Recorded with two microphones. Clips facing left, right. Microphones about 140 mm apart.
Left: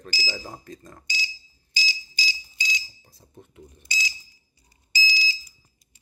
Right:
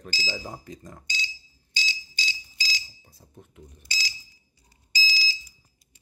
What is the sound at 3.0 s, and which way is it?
Speech, 5° right (ahead or behind).